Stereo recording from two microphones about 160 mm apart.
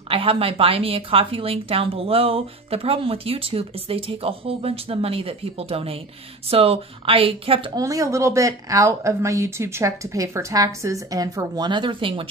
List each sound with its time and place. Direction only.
0.1 s a woman's voice: 35° right (ahead or behind)
7.8 s speech: 20° right (ahead or behind)